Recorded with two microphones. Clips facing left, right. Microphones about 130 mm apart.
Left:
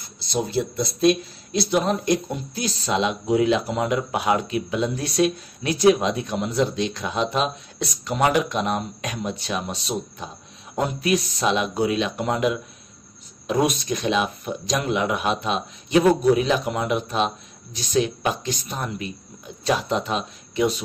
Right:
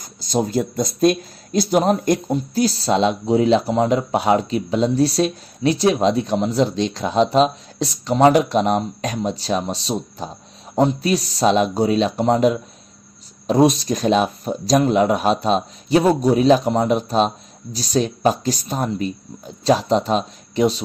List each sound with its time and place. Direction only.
0.0 s speech: 45° right (ahead or behind)